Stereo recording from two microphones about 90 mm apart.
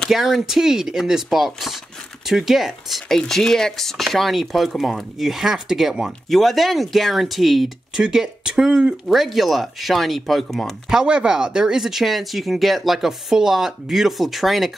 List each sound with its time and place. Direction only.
0.1 s speech: 5° right (ahead or behind)